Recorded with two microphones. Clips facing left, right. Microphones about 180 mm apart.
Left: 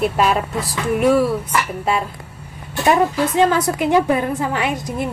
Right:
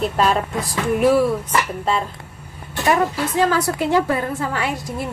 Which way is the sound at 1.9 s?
10° left (ahead or behind).